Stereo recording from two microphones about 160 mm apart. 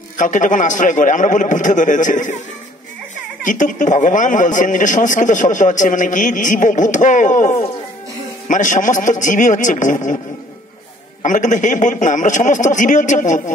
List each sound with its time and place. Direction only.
0.2 s a man's voice: 55° left (ahead or behind)
3.4 s a man's voice: 55° left (ahead or behind)
11.2 s a man's voice: 50° left (ahead or behind)